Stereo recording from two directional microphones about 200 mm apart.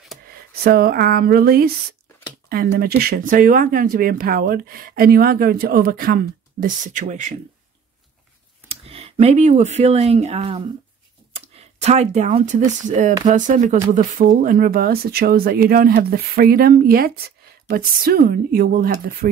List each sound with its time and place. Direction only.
0.6 s speech: 50° right (ahead or behind)
8.6 s speech: 30° right (ahead or behind); by 19.1 s 45° right (ahead or behind)